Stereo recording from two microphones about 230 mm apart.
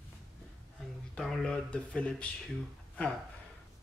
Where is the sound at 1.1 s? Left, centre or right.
Centre.